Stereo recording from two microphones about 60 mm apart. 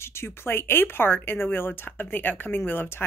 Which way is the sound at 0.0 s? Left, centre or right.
Left.